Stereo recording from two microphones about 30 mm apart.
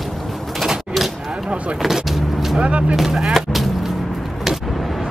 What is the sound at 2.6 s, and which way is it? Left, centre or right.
Speech, right.